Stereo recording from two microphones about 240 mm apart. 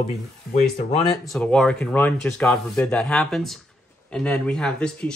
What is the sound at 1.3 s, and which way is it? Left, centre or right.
Speech, centre.